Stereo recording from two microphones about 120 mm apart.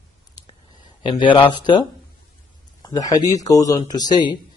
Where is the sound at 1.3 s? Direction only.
40° left (ahead or behind).